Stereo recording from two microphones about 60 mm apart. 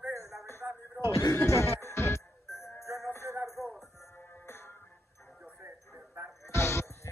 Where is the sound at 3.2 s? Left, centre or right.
Right.